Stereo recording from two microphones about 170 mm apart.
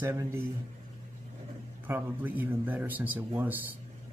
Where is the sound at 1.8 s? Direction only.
10° right (ahead or behind).